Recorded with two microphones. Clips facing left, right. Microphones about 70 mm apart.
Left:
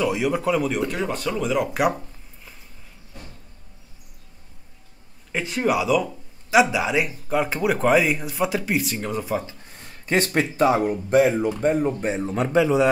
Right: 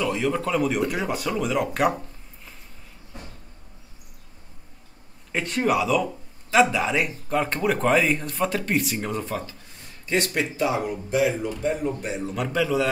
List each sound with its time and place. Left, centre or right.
0.0 s speech: centre
5.3 s speech: centre
10.0 s a man's voice: left